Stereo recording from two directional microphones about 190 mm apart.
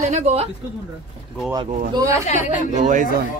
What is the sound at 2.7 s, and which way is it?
Speech, 40° right (ahead or behind).